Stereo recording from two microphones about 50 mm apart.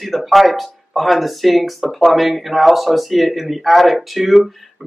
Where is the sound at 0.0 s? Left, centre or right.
Centre.